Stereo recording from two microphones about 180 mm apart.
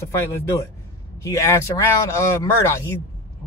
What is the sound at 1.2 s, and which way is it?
Speech, 15° left (ahead or behind).